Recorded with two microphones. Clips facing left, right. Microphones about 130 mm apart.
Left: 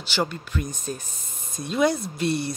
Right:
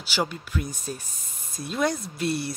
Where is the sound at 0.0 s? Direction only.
10° right (ahead or behind).